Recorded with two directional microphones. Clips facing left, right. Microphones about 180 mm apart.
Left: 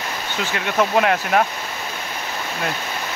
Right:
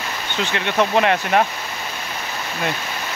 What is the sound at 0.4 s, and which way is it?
Speech, 5° left (ahead or behind).